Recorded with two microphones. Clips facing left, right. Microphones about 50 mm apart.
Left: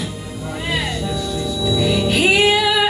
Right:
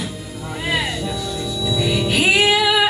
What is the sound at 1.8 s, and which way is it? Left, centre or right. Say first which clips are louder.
Music: left 2 dB; centre.